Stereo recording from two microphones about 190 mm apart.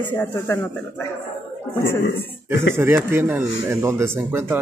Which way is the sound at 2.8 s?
15° right (ahead or behind).